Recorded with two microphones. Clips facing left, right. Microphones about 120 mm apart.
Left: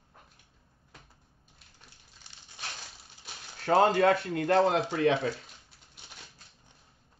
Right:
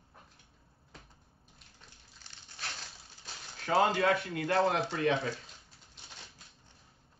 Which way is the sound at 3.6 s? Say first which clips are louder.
Left 5 dB; 40° left (ahead or behind).